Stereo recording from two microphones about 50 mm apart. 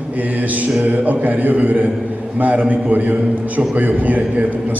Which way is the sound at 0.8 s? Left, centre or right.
Right.